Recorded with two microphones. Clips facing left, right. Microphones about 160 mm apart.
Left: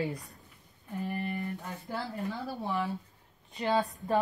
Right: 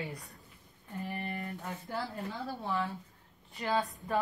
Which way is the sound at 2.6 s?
15° left (ahead or behind).